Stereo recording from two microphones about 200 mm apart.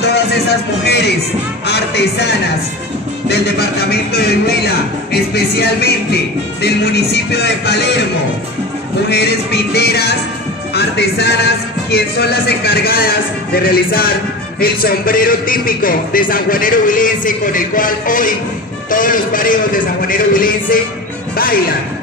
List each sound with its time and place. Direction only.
0.0 s music: 60° left (ahead or behind)
3.9 s speech: 55° left (ahead or behind)
5.3 s music: 55° left (ahead or behind)
9.1 s music: 55° left (ahead or behind)
10.7 s speech: 55° left (ahead or behind)